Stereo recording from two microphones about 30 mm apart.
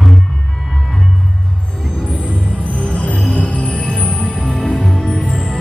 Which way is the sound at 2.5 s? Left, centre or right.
Left.